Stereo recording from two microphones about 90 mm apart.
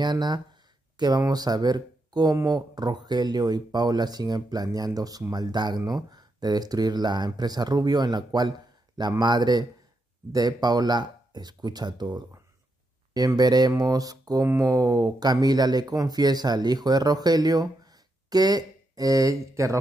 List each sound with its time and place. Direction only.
0.0 s speech: 50° right (ahead or behind)
13.4 s speech: 50° right (ahead or behind)